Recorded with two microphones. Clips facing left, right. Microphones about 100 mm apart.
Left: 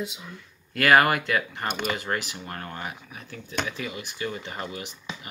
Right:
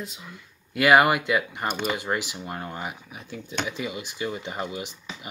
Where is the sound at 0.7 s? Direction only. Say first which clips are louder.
Right 1 dB; 10° right (ahead or behind).